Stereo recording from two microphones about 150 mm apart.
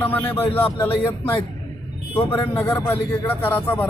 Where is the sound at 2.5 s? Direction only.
15° left (ahead or behind).